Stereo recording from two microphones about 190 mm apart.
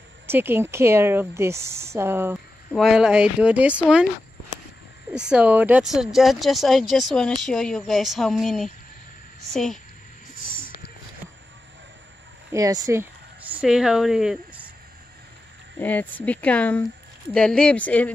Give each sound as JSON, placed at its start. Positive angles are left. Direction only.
{"t": 0.3, "sound": "speech", "side_deg": -10}
{"t": 5.1, "sound": "speech", "side_deg": -5}
{"t": 10.4, "sound": "a sound", "side_deg": 45}
{"t": 12.5, "sound": "speech", "side_deg": -15}
{"t": 15.8, "sound": "speech", "side_deg": 10}